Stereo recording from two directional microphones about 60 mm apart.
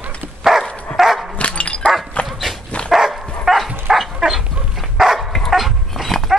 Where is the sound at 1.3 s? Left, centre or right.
Left.